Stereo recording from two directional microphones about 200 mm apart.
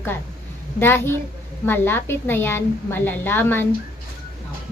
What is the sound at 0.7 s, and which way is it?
A woman's voice, 10° left (ahead or behind).